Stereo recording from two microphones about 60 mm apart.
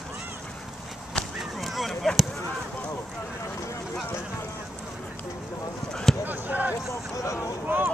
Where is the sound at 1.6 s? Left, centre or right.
Centre.